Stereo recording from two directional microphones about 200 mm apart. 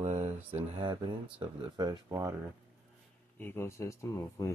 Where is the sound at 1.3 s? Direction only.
20° right (ahead or behind).